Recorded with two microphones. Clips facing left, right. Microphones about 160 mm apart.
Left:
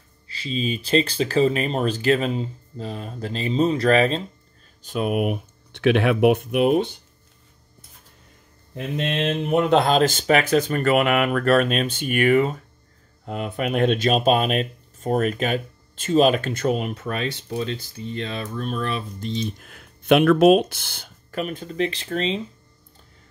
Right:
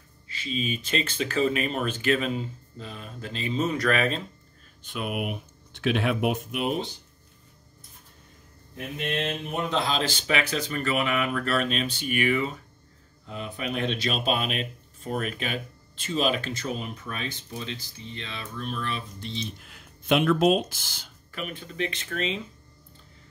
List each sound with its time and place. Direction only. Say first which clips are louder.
0.3 s speech: left 4 dB; 35° left (ahead or behind)
5.7 s speech: left 7 dB; 65° left (ahead or behind)
8.7 s speech: left 5 dB; 90° left; by 11.4 s 65° left (ahead or behind)
11.4 s speech: left 8 dB; 50° left (ahead or behind)
13.2 s speech: left 7 dB; 60° left (ahead or behind); by 22.4 s 30° left (ahead or behind)